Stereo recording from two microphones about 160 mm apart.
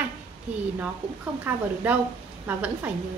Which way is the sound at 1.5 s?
10° right (ahead or behind).